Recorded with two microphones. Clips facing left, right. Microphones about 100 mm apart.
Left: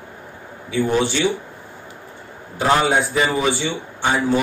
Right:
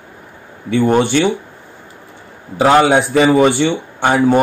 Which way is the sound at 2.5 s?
85° right.